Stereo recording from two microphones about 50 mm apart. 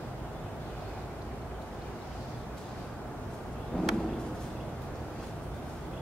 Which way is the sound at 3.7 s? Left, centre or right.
Centre.